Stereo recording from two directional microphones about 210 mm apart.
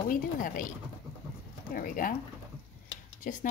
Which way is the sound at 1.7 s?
40° left (ahead or behind).